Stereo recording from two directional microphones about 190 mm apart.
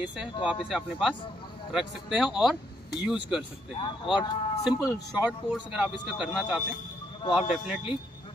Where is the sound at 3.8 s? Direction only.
25° left (ahead or behind).